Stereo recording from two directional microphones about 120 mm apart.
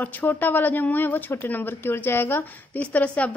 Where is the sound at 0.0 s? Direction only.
15° left (ahead or behind).